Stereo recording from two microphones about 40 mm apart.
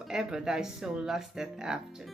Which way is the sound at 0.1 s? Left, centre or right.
Centre.